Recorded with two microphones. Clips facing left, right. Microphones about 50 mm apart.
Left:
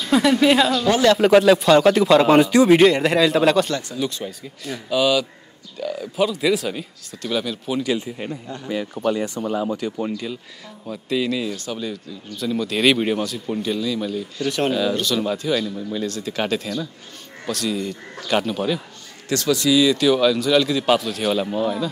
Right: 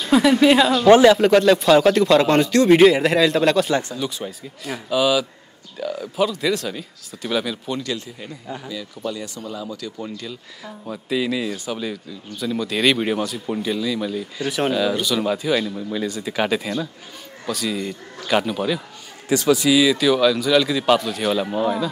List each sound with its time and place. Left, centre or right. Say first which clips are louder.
0.1 s speech: right 2 dB; centre
0.7 s speech: right 7 dB; right
1.1 s speech: left 1 dB; centre
2.8 s speech: right 1 dB; centre
7.2 s speech: right 1 dB; centre
7.7 s speech: left 8 dB; centre
8.6 s speech: left 8 dB; left
10.9 s speech: even; centre
19.2 s speech: right 2 dB; centre